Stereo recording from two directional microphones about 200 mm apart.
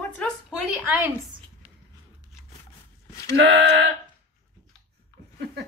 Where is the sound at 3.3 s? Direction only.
55° right (ahead or behind).